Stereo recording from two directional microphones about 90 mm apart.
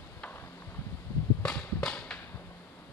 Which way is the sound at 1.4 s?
10° left (ahead or behind).